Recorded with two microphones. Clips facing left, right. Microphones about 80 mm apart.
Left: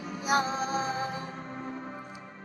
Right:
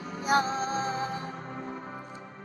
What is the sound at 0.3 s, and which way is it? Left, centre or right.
Music, right.